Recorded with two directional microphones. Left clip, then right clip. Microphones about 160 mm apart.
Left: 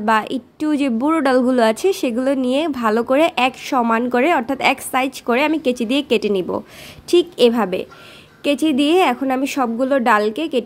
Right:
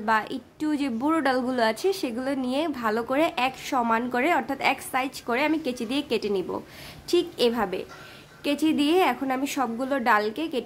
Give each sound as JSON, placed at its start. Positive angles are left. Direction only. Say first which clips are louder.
{"t": 0.0, "sound": "a woman's voice", "louder": "left 7 dB", "side_deg": 40}